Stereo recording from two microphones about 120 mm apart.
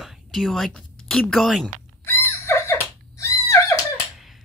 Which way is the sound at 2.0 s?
20° left (ahead or behind).